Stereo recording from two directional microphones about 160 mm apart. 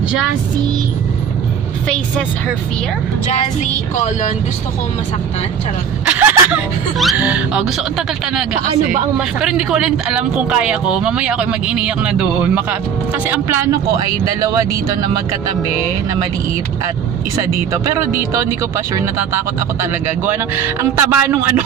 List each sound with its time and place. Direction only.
3.6 s music: 50° left (ahead or behind)
6.0 s speech: 10° right (ahead or behind)
9.4 s a man's voice: 5° right (ahead or behind)
17.8 s speech: 15° right (ahead or behind)
19.8 s speech: 15° right (ahead or behind)